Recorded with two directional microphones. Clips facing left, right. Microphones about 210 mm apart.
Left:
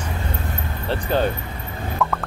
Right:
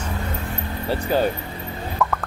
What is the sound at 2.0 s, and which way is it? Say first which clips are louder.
Music: even; centre (ahead or behind).